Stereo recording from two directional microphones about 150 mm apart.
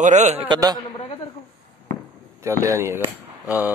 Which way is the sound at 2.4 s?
20° right (ahead or behind).